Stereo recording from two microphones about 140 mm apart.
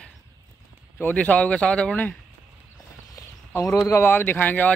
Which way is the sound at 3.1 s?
20° left (ahead or behind).